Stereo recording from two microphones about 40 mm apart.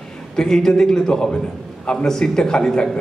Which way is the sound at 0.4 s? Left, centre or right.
Centre.